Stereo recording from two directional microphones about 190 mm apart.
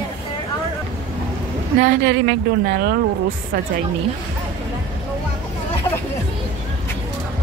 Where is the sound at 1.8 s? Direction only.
55° right (ahead or behind).